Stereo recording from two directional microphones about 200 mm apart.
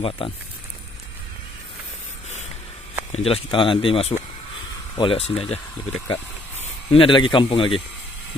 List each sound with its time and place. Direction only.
3.1 s speech: 30° left (ahead or behind)